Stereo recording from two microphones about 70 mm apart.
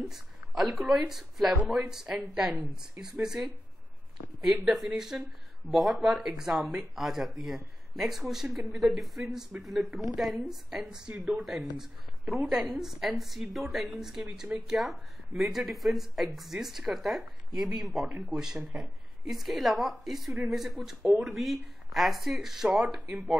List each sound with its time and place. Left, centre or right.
0.1 s a woman's voice: centre